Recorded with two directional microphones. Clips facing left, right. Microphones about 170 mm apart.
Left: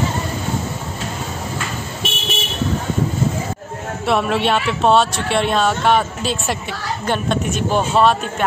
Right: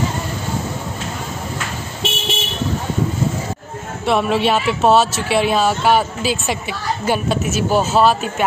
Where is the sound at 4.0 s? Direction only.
Centre (ahead or behind).